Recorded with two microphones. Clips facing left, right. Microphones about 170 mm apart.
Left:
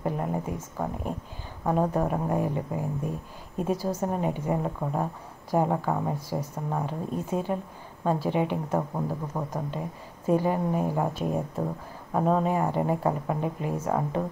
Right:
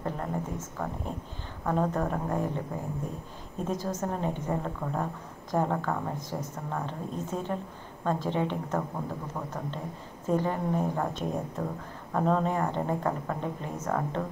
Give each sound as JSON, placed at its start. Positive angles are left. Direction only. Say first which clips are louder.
{"t": 0.0, "sound": "speech", "louder": "left 4 dB", "side_deg": 10}